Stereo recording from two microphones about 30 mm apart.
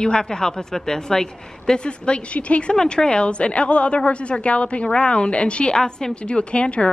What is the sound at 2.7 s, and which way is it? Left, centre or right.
A woman's voice, left.